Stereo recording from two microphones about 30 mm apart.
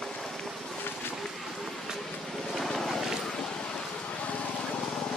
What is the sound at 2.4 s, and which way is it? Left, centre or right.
Vehicle, centre.